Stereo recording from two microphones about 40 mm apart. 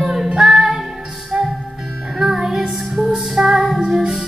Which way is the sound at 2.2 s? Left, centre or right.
Centre.